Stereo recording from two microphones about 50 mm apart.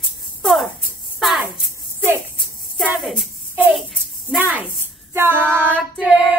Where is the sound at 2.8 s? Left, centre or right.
Centre.